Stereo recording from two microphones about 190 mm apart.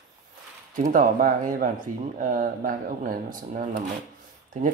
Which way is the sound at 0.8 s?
45° right (ahead or behind).